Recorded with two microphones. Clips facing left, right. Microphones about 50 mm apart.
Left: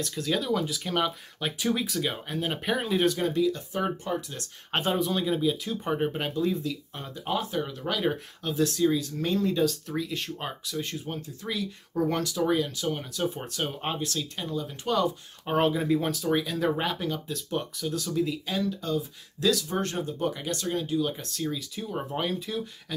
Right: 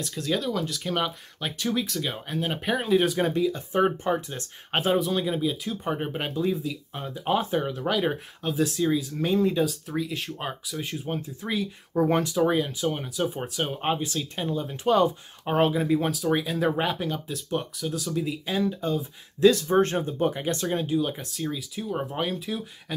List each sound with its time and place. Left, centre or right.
0.0 s speech: centre
3.2 s speech: right
4.7 s speech: centre
7.2 s speech: right
7.9 s speech: centre; by 15.0 s right
15.4 s speech: centre
18.6 s speech: right; by 22.6 s centre
22.9 s speech: centre